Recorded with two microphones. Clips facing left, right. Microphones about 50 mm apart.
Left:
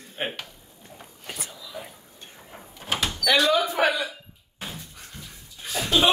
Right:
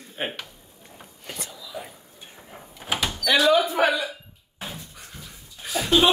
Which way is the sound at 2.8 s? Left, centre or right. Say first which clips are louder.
Even; centre.